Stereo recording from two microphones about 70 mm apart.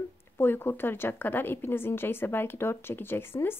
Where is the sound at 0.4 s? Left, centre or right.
Left.